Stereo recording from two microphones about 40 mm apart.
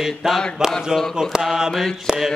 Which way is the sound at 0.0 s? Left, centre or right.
Centre.